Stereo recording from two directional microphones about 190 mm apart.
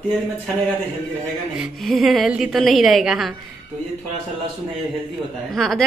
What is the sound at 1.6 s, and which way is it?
A woman's voice, centre (ahead or behind).